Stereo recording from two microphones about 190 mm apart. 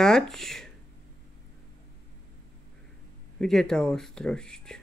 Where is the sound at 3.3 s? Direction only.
5° left (ahead or behind).